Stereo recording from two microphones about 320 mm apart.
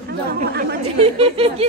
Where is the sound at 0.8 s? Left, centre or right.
Centre.